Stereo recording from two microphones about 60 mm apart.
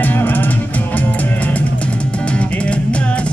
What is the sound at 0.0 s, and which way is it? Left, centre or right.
Music, left.